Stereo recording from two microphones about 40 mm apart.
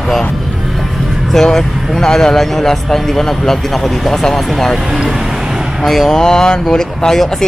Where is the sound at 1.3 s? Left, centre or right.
Centre.